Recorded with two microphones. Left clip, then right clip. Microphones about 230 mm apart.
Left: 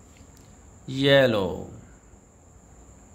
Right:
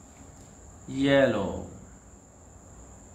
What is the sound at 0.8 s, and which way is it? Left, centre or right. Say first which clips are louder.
Speech: left 3 dB; left.